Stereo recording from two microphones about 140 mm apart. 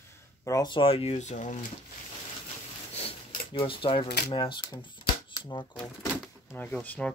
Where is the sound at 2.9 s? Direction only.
45° left (ahead or behind).